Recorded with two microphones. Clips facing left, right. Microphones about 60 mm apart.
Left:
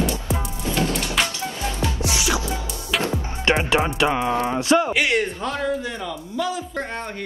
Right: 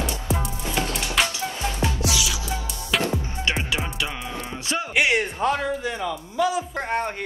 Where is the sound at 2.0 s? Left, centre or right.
Left.